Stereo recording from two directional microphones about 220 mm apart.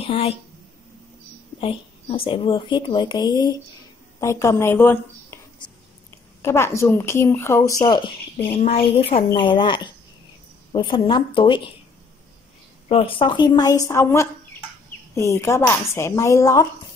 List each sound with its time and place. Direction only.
0.0 s a woman's voice: 25° left (ahead or behind)
1.6 s a woman's voice: 25° left (ahead or behind)
6.4 s a woman's voice: 10° left (ahead or behind)
12.8 s a woman's voice: 25° left (ahead or behind)